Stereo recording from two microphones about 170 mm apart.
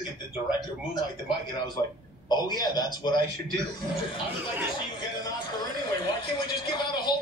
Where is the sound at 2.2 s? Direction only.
25° left (ahead or behind).